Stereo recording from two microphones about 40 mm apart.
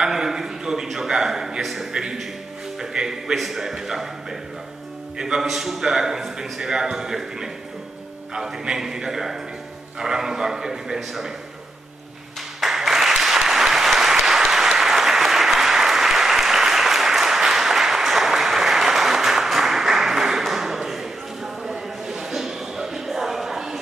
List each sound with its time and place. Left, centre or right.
0.0 s a sound: centre
1.6 s a man's voice: centre
3.3 s a man's voice: centre
12.5 s applause: centre